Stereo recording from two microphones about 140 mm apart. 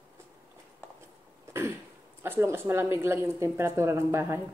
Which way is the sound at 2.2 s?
15° right (ahead or behind).